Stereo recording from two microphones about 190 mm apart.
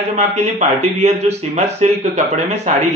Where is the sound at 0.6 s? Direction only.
35° right (ahead or behind).